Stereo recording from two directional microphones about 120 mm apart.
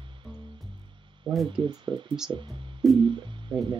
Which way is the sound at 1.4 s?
40° right (ahead or behind).